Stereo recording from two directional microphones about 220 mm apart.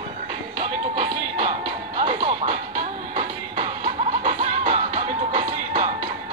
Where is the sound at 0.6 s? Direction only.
25° right (ahead or behind).